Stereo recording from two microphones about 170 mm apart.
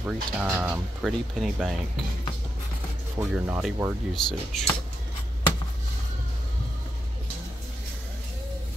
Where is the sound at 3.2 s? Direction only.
10° right (ahead or behind).